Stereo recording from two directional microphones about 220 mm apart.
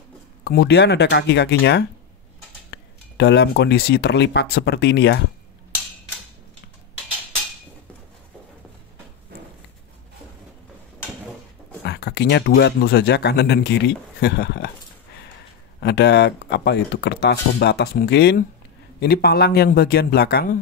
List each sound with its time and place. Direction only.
0.4 s speech: 45° left (ahead or behind)
11.8 s speech: 50° left (ahead or behind)
15.8 s speech: 50° left (ahead or behind)